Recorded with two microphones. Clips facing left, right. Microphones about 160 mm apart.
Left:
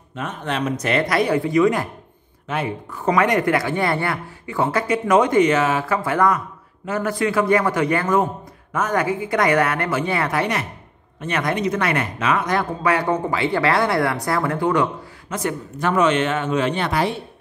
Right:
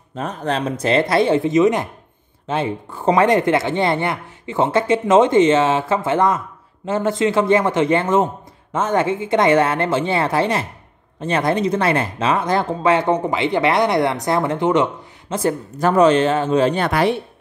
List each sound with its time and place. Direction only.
0.1 s speech: 35° right (ahead or behind)